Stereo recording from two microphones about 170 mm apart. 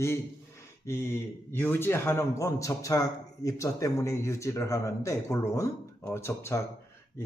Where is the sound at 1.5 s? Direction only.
10° left (ahead or behind).